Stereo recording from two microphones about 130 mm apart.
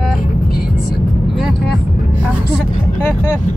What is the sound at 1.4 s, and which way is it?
Speech, centre (ahead or behind).